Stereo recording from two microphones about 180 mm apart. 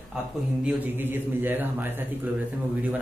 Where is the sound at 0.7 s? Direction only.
10° right (ahead or behind).